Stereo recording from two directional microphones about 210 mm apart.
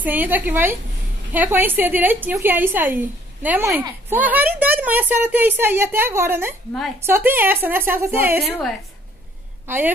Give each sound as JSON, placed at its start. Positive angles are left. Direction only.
{"t": 0.0, "sound": "a woman's voice", "side_deg": -10}